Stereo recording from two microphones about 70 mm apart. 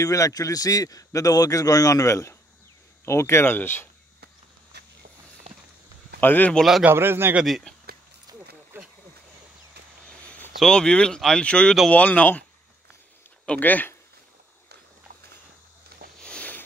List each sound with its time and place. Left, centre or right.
0.0 s a man's voice: left
6.2 s speech: left
6.8 s a man's voice: right
7.7 s a sound: centre
8.7 s vehicle: right
10.0 s a sound: centre
10.6 s speech: centre
13.5 s speech: left
16.2 s a sound: centre